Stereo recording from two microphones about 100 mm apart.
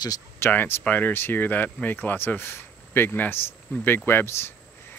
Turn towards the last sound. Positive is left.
turn(degrees=25)  # may be behind; listen again after turning